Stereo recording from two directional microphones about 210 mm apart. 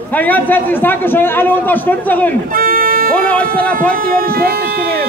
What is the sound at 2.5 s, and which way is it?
Vehicle, 40° right (ahead or behind).